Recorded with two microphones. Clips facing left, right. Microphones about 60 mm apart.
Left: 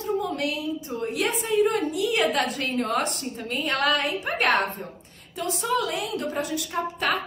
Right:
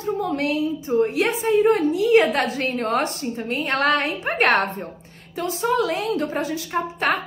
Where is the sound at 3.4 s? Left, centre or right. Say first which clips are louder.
Right 3 dB; right.